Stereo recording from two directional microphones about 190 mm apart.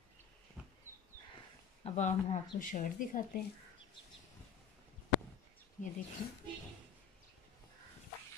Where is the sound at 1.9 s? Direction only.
40° left (ahead or behind).